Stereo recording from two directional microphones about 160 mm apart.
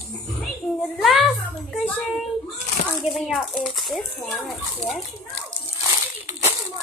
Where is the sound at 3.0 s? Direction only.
Centre (ahead or behind).